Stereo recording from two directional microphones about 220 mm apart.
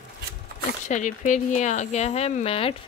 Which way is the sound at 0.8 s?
35° left (ahead or behind).